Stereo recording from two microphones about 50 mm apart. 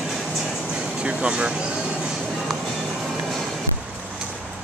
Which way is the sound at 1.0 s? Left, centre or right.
Centre.